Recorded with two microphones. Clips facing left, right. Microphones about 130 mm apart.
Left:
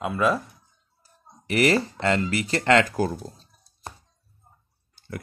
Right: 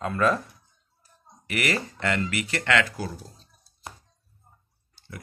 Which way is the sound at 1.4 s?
30° left (ahead or behind).